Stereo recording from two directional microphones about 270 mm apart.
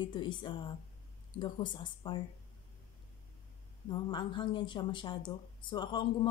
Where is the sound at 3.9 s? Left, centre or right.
Centre.